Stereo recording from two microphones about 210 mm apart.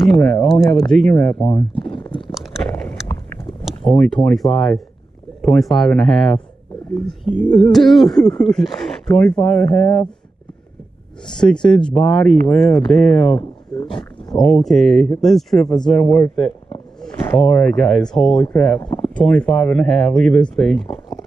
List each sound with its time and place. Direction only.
0.0 s speech: 5° left (ahead or behind)
1.8 s stomach rumble: 25° left (ahead or behind)
4.0 s speech: 5° left (ahead or behind)
11.3 s speech: 5° left (ahead or behind)
13.4 s a sound: 25° left (ahead or behind)
14.3 s speech: centre (ahead or behind)